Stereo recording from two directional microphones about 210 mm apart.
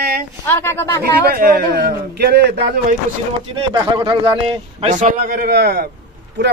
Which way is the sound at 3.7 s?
20° right (ahead or behind).